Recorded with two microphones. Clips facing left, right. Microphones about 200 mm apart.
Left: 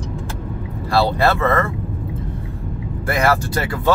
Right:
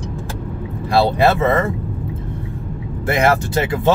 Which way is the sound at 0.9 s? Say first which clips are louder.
Right 2 dB; 20° right (ahead or behind).